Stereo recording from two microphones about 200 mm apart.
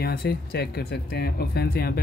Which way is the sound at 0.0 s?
50° left (ahead or behind).